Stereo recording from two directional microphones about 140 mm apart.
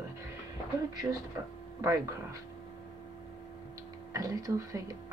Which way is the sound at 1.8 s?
20° right (ahead or behind).